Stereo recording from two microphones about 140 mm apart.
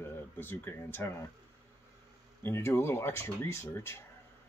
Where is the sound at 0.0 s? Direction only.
15° left (ahead or behind).